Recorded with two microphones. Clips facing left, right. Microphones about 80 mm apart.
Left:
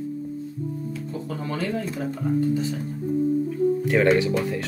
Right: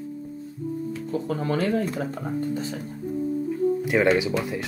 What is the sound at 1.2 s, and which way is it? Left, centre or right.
Speech, right.